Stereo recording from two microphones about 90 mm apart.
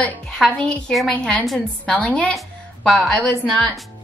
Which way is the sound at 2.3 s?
5° left (ahead or behind).